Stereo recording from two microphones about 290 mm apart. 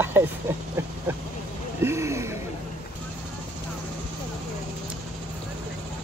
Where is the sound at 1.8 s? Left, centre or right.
Centre.